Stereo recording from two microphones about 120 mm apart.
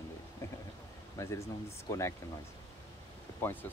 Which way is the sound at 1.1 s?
25° left (ahead or behind).